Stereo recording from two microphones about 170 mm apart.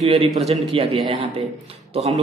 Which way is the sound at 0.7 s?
30° right (ahead or behind).